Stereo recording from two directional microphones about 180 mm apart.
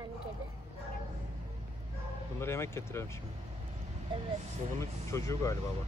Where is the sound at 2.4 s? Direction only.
15° left (ahead or behind).